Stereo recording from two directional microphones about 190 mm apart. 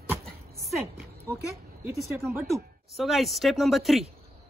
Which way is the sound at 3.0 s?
Centre (ahead or behind).